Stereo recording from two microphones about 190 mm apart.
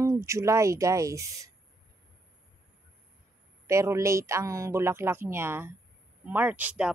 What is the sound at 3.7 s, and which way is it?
Speech, 15° right (ahead or behind).